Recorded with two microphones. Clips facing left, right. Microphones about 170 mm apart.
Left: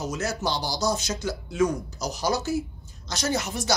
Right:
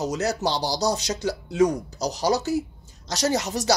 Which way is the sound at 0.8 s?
35° right (ahead or behind).